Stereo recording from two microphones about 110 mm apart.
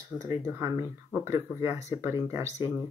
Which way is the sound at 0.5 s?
25° right (ahead or behind).